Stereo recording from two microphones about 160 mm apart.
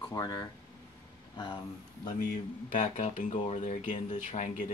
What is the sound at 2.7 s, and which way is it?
Speech, 50° left (ahead or behind).